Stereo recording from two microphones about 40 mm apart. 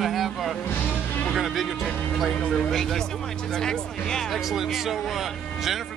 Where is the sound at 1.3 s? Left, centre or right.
Centre.